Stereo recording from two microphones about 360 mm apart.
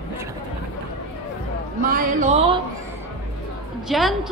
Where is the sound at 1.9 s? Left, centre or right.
Centre.